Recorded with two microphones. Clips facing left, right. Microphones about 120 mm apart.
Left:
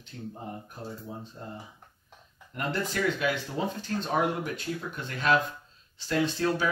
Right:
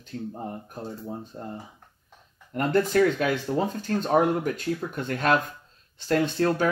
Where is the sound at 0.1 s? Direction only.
50° right (ahead or behind).